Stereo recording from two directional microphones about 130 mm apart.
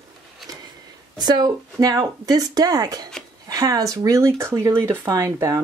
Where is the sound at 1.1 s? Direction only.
30° right (ahead or behind).